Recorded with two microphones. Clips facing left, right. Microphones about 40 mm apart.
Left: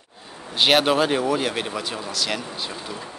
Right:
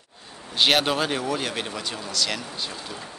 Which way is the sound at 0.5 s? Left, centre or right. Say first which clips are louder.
Left 3 dB; centre.